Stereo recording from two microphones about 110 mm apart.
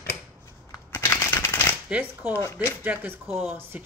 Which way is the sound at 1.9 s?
15° right (ahead or behind).